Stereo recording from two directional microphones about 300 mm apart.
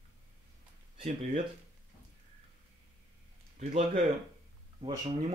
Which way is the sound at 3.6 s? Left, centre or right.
Right.